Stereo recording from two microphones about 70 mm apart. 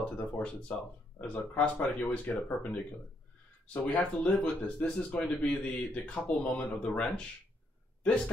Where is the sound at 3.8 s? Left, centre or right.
Left.